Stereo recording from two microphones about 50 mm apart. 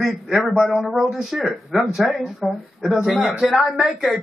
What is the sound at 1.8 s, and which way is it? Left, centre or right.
Speech, centre.